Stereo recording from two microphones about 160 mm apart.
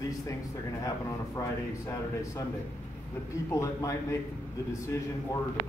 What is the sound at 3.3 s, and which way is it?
Speech, 20° left (ahead or behind).